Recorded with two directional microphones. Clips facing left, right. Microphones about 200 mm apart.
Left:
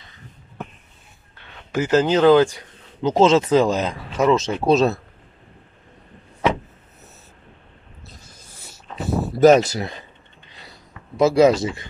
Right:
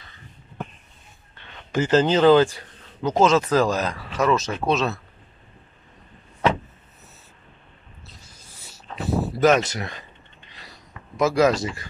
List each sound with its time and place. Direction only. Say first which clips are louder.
1.6 s speech: left 1 dB; 10° left (ahead or behind)
3.0 s speech: left 3 dB; 25° left (ahead or behind)
9.4 s speech: left 6 dB; 35° left (ahead or behind)
11.1 s speech: left 4 dB; 25° left (ahead or behind)